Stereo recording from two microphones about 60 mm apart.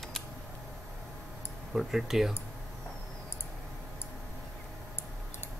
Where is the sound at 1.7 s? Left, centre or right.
Centre.